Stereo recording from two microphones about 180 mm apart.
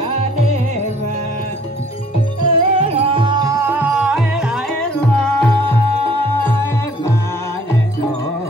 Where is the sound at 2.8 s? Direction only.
35° right (ahead or behind); by 7.7 s 15° left (ahead or behind).